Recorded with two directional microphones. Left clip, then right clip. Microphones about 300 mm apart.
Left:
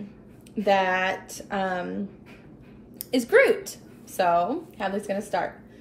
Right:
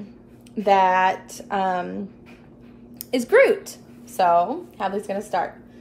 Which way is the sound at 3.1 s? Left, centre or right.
Centre.